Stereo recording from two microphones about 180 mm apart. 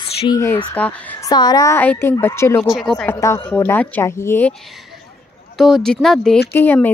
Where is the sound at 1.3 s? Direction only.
20° left (ahead or behind).